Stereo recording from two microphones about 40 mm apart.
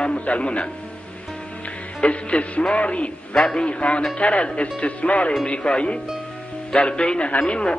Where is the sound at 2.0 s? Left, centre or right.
Left.